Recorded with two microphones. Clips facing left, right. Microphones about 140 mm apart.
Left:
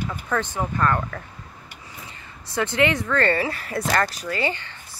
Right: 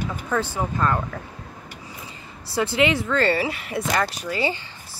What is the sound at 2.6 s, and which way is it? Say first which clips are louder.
Speech: right 1 dB; 20° right (ahead or behind).